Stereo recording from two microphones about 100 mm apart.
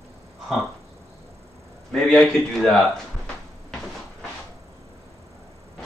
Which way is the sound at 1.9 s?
5° left (ahead or behind).